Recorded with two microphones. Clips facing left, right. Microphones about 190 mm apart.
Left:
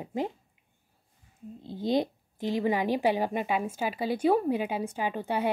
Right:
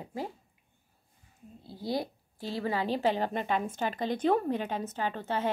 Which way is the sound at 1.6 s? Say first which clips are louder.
Left 6 dB; 20° left (ahead or behind).